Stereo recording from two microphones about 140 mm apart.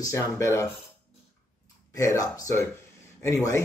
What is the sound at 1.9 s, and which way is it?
Speech, 25° left (ahead or behind).